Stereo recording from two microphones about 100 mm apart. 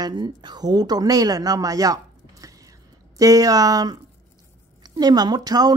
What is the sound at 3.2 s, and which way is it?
Speech, 35° right (ahead or behind).